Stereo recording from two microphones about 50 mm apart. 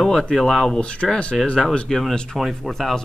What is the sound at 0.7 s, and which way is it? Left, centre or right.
Speech, left.